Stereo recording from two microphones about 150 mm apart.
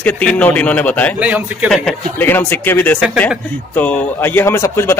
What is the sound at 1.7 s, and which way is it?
Speech, centre (ahead or behind).